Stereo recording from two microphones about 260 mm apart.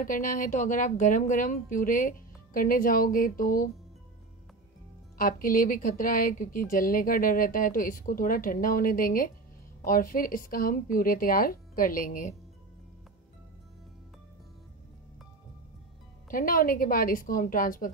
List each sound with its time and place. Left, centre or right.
0.0 s a woman's voice: left
5.1 s a woman's voice: left
16.3 s a woman's voice: left